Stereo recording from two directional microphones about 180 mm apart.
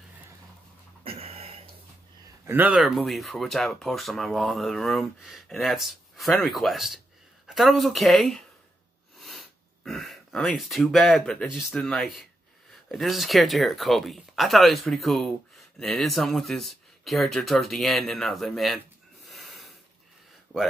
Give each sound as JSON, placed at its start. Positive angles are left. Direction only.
{"t": 1.0, "sound": "a sound", "side_deg": -30}
{"t": 2.4, "sound": "speech", "side_deg": -10}
{"t": 19.2, "sound": "snort", "side_deg": 0}